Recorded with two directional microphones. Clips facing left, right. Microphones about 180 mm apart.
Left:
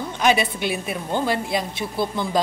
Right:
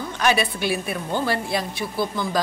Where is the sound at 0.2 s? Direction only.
20° left (ahead or behind).